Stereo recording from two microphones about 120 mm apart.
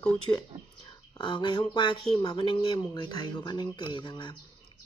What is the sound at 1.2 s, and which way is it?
Speech, 40° left (ahead or behind).